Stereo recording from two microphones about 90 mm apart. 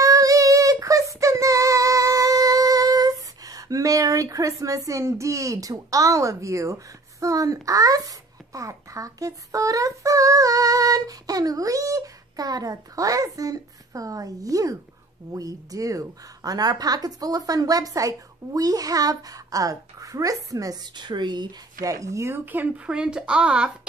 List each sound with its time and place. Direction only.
0.0 s female singing: 40° right (ahead or behind)
15.3 s speech: 40° right (ahead or behind)
20.9 s speech: 55° right (ahead or behind)
21.8 s speech: 40° right (ahead or behind); by 22.9 s 20° right (ahead or behind)
22.9 s speech: 10° right (ahead or behind)